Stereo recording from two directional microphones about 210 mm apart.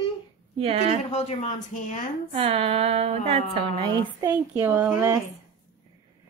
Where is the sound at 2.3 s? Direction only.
30° right (ahead or behind).